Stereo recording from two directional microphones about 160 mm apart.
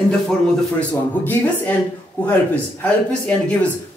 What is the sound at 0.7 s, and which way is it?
A man's voice, 10° left (ahead or behind).